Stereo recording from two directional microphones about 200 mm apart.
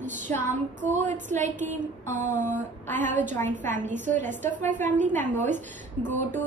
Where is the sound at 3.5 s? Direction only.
40° right (ahead or behind).